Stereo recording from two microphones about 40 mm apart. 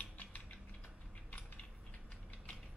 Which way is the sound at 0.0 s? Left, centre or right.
Left.